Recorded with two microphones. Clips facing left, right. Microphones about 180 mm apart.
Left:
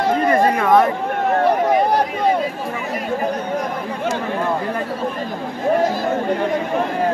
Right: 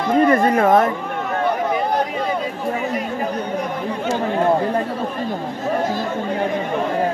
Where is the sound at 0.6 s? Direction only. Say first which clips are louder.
Even; 45° right (ahead or behind).